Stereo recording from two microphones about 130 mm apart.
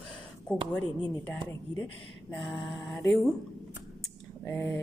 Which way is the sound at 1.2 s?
15° left (ahead or behind).